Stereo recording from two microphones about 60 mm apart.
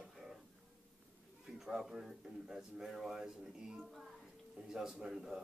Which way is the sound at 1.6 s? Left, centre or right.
Centre.